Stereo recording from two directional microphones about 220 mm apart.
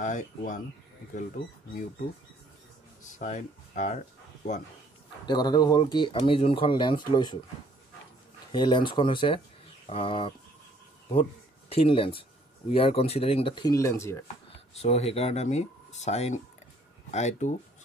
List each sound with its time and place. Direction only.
0.0 s speech: 35° left (ahead or behind)
3.0 s speech: 35° left (ahead or behind)
5.2 s speech: 20° left (ahead or behind)
8.5 s speech: 20° left (ahead or behind)
11.7 s speech: 25° left (ahead or behind)
14.8 s speech: 30° left (ahead or behind)